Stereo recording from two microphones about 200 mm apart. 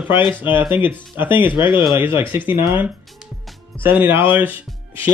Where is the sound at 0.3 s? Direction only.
10° right (ahead or behind).